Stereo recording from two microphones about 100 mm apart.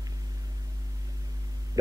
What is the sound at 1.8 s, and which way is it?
Hum, 40° right (ahead or behind).